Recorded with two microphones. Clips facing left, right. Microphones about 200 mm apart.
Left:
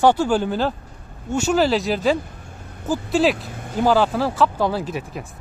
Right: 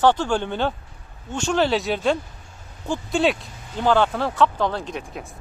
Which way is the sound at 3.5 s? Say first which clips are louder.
Left 9 dB; 55° left (ahead or behind).